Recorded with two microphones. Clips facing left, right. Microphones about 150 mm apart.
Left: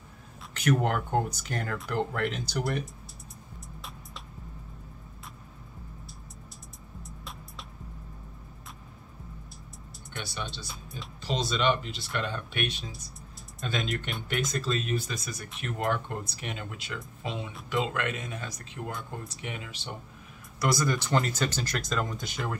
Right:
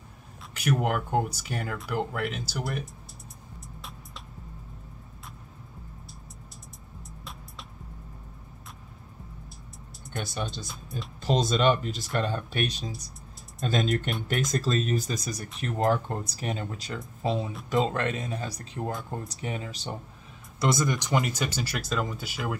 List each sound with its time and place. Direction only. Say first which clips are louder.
0.6 s speech: even; 10° right (ahead or behind)
7.0 s music: left 1 dB; centre (ahead or behind)
10.1 s speech: right 4 dB; 45° right (ahead or behind)
10.7 s speech: right 4 dB; centre (ahead or behind)
11.1 s speech: right 5 dB; 45° right (ahead or behind)
20.5 s speech: right 1 dB; 20° right (ahead or behind); by 22.6 s 5° right (ahead or behind)